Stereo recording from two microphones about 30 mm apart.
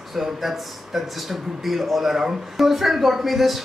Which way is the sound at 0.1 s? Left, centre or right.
Centre.